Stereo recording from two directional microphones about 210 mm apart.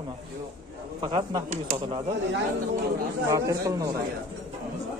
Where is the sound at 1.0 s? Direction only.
20° right (ahead or behind).